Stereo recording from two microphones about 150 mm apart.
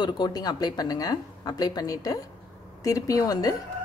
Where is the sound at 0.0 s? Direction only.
25° left (ahead or behind).